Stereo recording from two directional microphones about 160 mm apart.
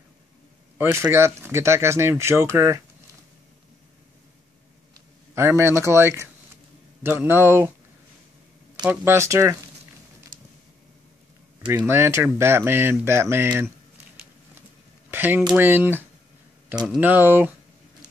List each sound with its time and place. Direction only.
0.8 s speech: 20° right (ahead or behind)
5.3 s speech: 15° right (ahead or behind)
8.8 s speech: 15° right (ahead or behind)
11.7 s speech: 15° right (ahead or behind)
15.0 s speech: 15° right (ahead or behind)